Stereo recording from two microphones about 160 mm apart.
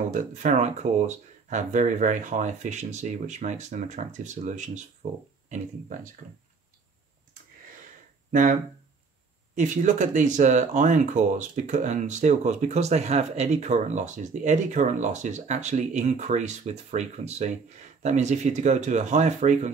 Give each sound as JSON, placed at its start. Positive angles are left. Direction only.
{"t": 0.1, "sound": "speech", "side_deg": -50}
{"t": 8.3, "sound": "speech", "side_deg": -55}
{"t": 9.6, "sound": "speech", "side_deg": -50}